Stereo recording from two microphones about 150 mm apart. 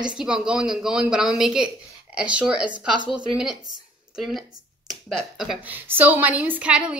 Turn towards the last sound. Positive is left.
turn(degrees=-10)  # may be behind; listen again after turning